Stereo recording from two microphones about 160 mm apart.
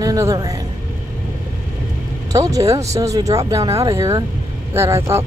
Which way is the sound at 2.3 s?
20° right (ahead or behind).